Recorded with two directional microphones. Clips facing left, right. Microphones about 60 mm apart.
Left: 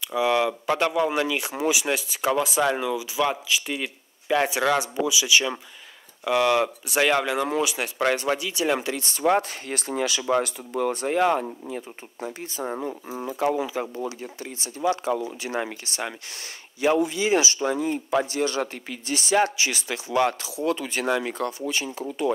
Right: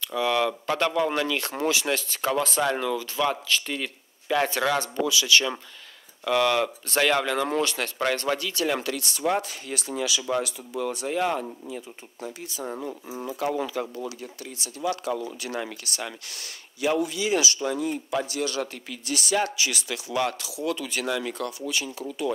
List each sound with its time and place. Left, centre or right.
0.0 s speech: centre; by 22.3 s left